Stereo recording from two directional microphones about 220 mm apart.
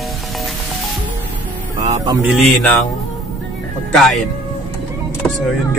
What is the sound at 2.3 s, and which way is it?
Speech, centre (ahead or behind).